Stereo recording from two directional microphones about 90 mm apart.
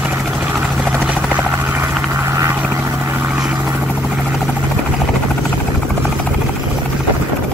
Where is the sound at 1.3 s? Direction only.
25° right (ahead or behind).